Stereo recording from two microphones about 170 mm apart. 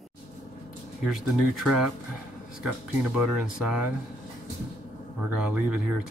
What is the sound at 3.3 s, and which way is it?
Speech, 5° right (ahead or behind).